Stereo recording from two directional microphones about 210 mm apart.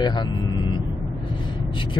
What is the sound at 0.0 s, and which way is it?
Speech, 20° left (ahead or behind).